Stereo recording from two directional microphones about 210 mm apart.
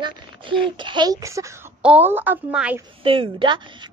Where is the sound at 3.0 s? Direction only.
25° right (ahead or behind).